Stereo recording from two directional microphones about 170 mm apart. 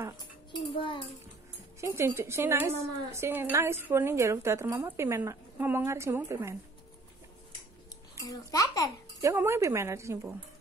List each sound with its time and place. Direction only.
0.7 s a child's voice: 30° left (ahead or behind)
1.8 s a woman's voice: 15° right (ahead or behind)
8.2 s a child's voice: 20° left (ahead or behind)
9.2 s a woman's voice: 15° right (ahead or behind)